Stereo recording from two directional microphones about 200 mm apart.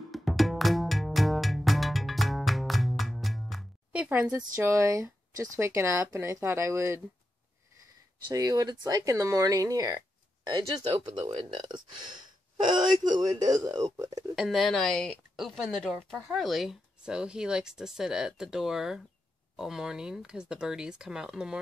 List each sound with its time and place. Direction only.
0.1 s music: centre (ahead or behind)
4.6 s speech: 15° right (ahead or behind)
8.3 s speech: 20° right (ahead or behind)
14.3 s speech: centre (ahead or behind)